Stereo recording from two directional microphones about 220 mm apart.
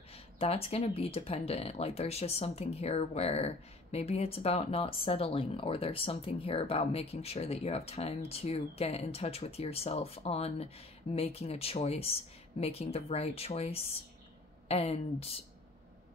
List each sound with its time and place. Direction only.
0.1 s speech: 25° left (ahead or behind)